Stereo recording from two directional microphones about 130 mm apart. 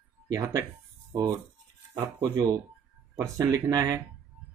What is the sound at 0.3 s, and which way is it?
Speech, 25° right (ahead or behind).